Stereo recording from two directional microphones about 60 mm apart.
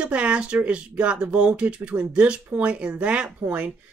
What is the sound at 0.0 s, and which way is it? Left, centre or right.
Speech, right.